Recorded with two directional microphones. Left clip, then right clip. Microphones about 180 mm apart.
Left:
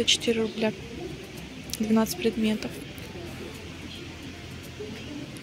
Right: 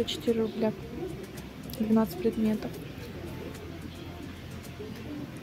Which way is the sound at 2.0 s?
5° right (ahead or behind).